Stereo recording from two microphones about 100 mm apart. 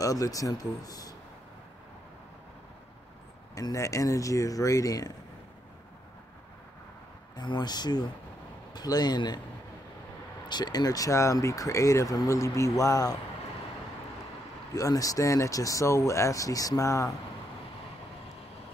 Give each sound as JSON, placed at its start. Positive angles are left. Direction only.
{"t": 0.0, "sound": "speech", "side_deg": 35}
{"t": 3.5, "sound": "speech", "side_deg": 35}
{"t": 7.3, "sound": "speech", "side_deg": 45}
{"t": 10.5, "sound": "speech", "side_deg": 45}
{"t": 14.8, "sound": "speech", "side_deg": 35}